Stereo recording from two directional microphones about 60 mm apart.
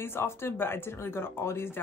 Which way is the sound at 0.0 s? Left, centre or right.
Left.